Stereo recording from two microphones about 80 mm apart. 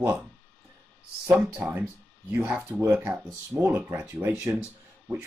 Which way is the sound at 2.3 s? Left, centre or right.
Centre.